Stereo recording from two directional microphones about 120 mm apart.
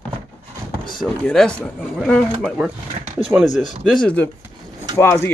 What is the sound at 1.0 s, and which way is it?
A man's voice, 5° left (ahead or behind).